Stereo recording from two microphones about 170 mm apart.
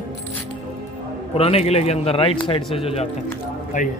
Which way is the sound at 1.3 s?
35° left (ahead or behind).